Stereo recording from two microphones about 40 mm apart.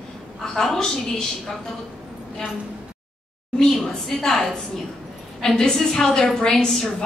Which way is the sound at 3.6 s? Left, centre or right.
Centre.